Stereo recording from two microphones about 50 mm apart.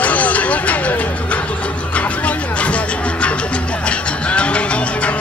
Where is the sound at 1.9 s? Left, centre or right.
Left.